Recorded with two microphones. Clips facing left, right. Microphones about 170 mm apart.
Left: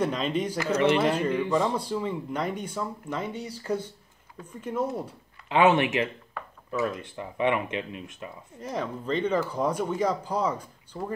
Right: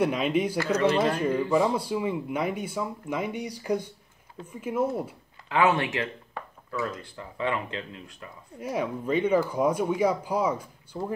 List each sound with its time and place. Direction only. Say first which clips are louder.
0.0 s speech: right 2 dB; 10° right (ahead or behind)
0.9 s speech: left 1 dB; 10° left (ahead or behind)
1.6 s speech: right 2 dB; 15° right (ahead or behind)
5.5 s speech: left 3 dB; 20° left (ahead or behind)
8.5 s speech: right 3 dB; 10° right (ahead or behind)